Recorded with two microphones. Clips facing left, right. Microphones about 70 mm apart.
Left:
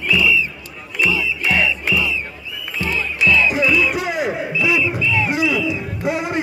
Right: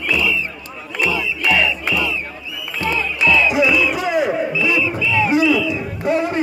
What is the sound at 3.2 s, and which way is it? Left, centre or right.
Music, centre.